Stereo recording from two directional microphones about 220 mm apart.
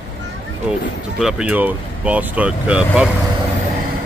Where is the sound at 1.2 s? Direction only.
5° right (ahead or behind).